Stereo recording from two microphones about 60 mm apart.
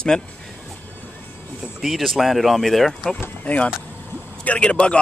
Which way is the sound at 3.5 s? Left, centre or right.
Left.